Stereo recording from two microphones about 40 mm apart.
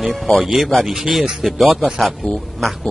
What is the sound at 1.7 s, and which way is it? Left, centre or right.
Speech, centre.